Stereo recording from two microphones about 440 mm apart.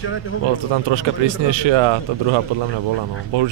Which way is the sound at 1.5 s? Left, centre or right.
Right.